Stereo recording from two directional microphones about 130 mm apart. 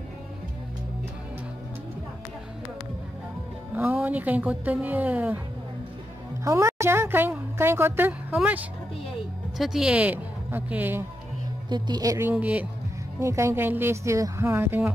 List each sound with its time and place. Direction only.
3.7 s speech: 15° right (ahead or behind)
6.4 s a sound: 20° right (ahead or behind)
9.6 s speech: 5° right (ahead or behind)
11.7 s speech: 30° right (ahead or behind)
12.3 s speech: 10° right (ahead or behind)
13.2 s speech: 20° right (ahead or behind)